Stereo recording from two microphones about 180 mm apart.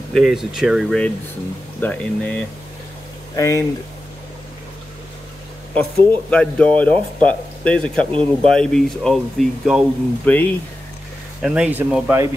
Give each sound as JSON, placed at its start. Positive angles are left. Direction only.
{"t": 0.1, "sound": "speech", "side_deg": 0}
{"t": 5.8, "sound": "speech", "side_deg": 5}
{"t": 8.1, "sound": "speech", "side_deg": -30}
{"t": 8.5, "sound": "speech", "side_deg": 5}
{"t": 11.4, "sound": "speech", "side_deg": -5}